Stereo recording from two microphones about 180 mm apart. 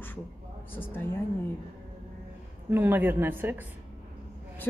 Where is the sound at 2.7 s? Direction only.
10° right (ahead or behind).